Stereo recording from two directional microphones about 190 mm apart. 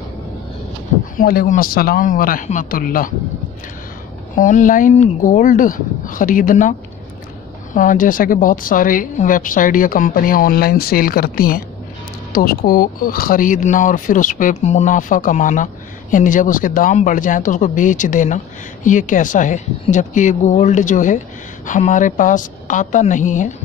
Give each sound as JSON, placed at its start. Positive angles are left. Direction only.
{"t": 1.1, "sound": "speech", "side_deg": 50}
{"t": 4.4, "sound": "speech", "side_deg": 40}
{"t": 7.7, "sound": "speech", "side_deg": 45}